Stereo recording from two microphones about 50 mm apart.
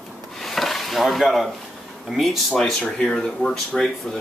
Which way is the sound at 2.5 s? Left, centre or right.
Centre.